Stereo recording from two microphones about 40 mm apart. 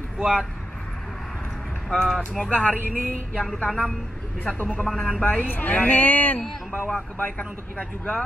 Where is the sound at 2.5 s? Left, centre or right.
Left.